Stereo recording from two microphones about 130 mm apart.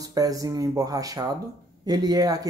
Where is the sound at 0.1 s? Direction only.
25° right (ahead or behind).